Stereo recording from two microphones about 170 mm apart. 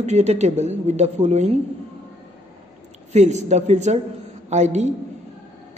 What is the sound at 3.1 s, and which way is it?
A woman's voice, 40° right (ahead or behind).